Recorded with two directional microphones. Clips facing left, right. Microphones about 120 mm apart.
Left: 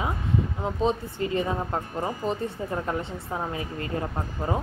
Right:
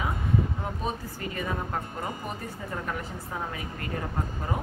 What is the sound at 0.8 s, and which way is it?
Speech, 25° left (ahead or behind).